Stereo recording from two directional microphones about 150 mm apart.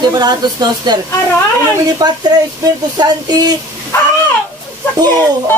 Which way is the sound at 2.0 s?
25° right (ahead or behind).